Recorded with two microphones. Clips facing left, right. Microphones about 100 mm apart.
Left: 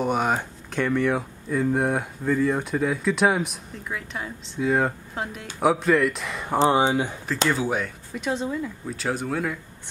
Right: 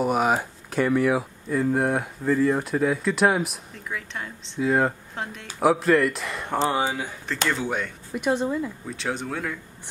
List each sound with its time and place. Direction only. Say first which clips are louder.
0.0 s speech: right 1 dB; centre (ahead or behind)
6.6 s speech: left 5 dB; 20° left (ahead or behind)
7.4 s speech: left 2 dB; 5° left (ahead or behind)